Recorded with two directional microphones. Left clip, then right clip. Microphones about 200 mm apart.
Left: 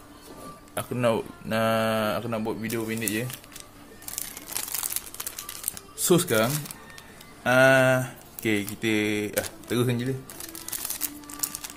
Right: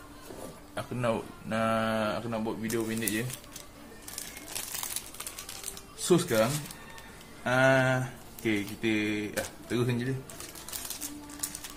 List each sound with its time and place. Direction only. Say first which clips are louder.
0.7 s speech: left 6 dB; 50° left (ahead or behind)
5.9 s speech: left 3 dB; 60° left (ahead or behind)